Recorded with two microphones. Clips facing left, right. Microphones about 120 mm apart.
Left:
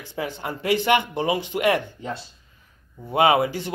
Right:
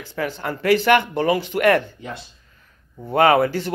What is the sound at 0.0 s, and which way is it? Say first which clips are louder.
Speech: right 3 dB; 20° left (ahead or behind).